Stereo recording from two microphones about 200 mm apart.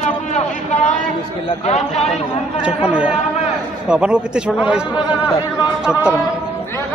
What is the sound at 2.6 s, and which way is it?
A man's voice, 5° right (ahead or behind).